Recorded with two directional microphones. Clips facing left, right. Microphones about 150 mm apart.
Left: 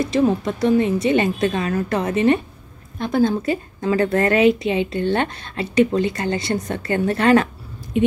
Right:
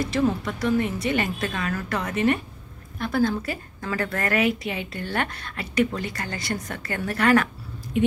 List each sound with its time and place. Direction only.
0.0 s a woman's voice: 20° left (ahead or behind)